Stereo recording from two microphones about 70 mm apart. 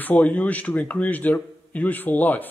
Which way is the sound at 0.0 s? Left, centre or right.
Left.